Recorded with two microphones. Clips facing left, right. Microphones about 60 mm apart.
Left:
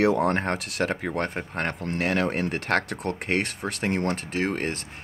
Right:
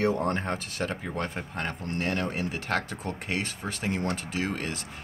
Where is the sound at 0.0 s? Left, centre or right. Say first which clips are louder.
Left 5 dB; left.